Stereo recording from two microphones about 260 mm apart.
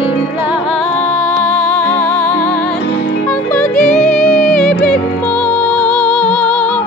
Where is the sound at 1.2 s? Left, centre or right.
Centre.